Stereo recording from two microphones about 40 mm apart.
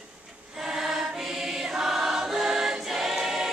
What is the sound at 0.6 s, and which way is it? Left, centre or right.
Choir, centre.